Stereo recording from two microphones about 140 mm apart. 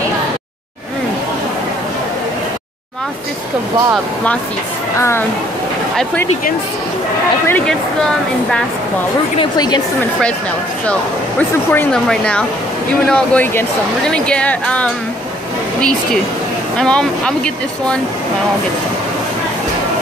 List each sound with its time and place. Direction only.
7.4 s speech: 10° left (ahead or behind)
9.4 s a woman's voice: 30° left (ahead or behind)
10.9 s speech: 10° left (ahead or behind)
16.7 s speech: 5° left (ahead or behind)